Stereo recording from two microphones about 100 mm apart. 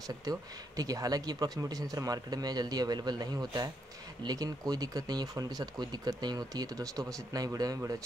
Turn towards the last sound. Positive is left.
turn(degrees=-40)  # may be behind; listen again after turning